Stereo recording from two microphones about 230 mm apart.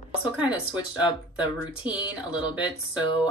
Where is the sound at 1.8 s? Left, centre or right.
Left.